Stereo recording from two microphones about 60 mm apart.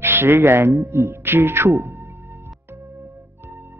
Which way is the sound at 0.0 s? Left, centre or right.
Right.